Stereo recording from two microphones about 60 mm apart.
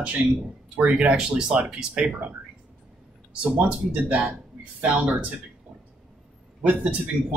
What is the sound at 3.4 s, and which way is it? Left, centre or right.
Speech, right.